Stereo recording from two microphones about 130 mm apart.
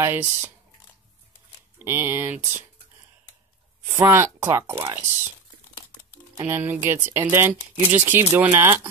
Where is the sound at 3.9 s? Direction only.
20° right (ahead or behind).